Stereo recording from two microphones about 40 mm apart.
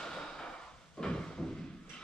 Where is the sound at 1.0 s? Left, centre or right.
Centre.